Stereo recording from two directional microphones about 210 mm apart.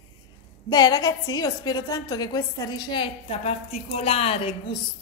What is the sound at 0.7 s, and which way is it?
A woman's voice, 20° left (ahead or behind).